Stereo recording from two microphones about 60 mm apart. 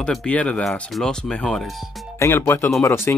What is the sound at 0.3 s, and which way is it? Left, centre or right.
Speech, left.